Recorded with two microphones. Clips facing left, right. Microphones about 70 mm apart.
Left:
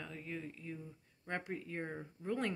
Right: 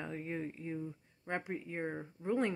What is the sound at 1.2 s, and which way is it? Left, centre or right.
Speech, centre.